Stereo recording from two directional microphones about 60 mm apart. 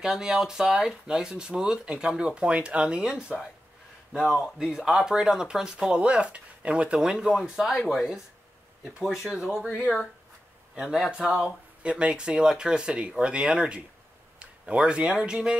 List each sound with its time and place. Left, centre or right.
0.0 s speech: centre
4.4 s speech: centre
10.7 s a man's voice: centre